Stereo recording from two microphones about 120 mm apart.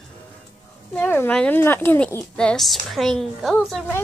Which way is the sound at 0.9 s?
15° left (ahead or behind).